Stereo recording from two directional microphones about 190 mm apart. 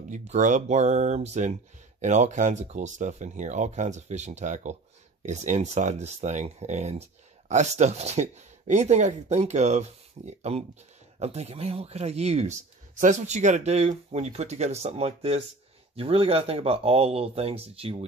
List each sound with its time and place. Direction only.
0.1 s speech: 40° right (ahead or behind)